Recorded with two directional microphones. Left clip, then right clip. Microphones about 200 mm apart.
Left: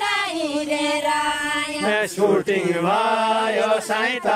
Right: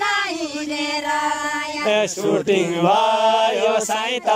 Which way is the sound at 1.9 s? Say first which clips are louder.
Right 1 dB; 15° right (ahead or behind).